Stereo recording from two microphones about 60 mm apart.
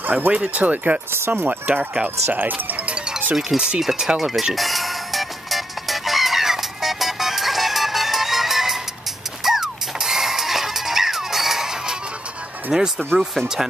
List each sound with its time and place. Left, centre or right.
0.0 s speech: right
1.1 s speech: right
3.3 s speech: centre
4.6 s music: centre
12.7 s speech: centre
13.3 s speech: centre